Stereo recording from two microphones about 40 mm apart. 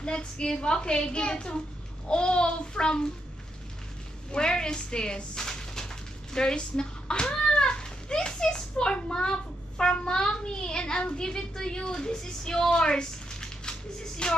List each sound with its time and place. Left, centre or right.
0.0 s a woman's voice: left
4.3 s speech: centre